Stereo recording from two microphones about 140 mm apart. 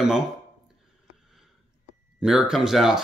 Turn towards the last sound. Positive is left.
turn(degrees=-5)  # may be behind; listen again after turning